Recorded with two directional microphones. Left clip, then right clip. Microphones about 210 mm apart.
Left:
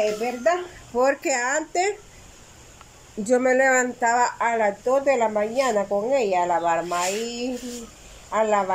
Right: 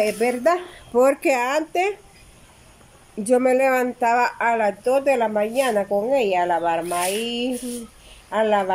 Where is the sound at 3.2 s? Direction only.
5° right (ahead or behind).